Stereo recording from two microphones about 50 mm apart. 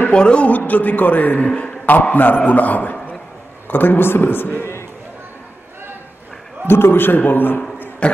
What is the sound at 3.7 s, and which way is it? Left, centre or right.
Speech, left.